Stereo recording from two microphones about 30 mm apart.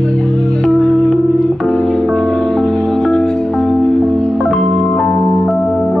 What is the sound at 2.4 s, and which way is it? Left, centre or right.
Music, centre.